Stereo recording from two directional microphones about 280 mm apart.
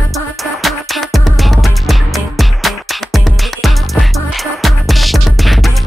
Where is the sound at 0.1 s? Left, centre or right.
Centre.